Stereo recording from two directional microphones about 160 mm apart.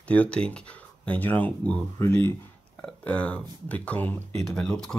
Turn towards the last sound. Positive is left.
turn(degrees=5)  # may be behind; listen again after turning